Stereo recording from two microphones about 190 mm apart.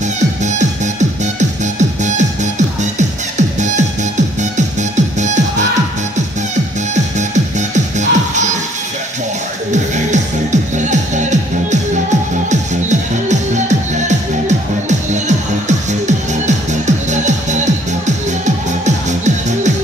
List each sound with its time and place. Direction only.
0.2 s music: 40° right (ahead or behind)
7.2 s music: 40° right (ahead or behind)
9.7 s music: 40° right (ahead or behind)